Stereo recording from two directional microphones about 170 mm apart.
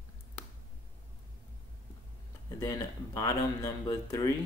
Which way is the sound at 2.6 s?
20° left (ahead or behind).